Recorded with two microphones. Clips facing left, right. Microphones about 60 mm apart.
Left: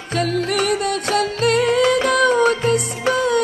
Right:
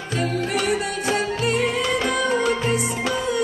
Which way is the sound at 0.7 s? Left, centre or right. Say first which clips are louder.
Left 3 dB; left.